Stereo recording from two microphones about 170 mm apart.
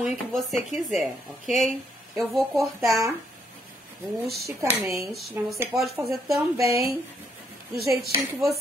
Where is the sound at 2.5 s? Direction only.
15° right (ahead or behind).